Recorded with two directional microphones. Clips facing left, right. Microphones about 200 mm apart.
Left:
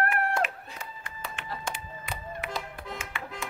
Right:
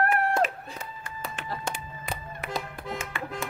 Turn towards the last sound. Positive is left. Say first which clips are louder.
# right 4 dB
turn(degrees=-40)  # may be behind; listen again after turning